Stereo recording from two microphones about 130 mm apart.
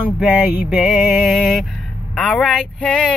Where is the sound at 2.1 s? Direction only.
5° left (ahead or behind).